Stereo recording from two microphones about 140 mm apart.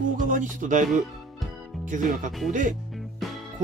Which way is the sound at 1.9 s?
65° right (ahead or behind).